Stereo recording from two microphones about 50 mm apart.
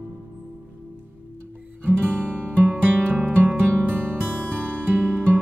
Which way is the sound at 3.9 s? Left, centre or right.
Right.